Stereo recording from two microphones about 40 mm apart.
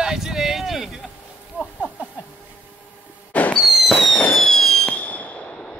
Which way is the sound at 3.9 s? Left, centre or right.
Centre.